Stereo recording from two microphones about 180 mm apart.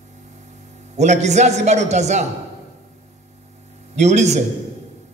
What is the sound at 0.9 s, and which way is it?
A man's voice, 40° right (ahead or behind).